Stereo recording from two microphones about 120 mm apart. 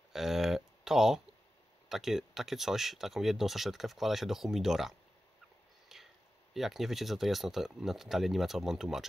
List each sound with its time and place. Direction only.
0.1 s a sound: centre (ahead or behind)
1.9 s speech: centre (ahead or behind)
5.9 s whispering: centre (ahead or behind)
6.5 s speech: centre (ahead or behind)